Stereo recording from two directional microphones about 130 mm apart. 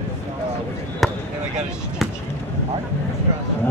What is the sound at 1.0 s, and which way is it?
Basketball bounce, centre (ahead or behind).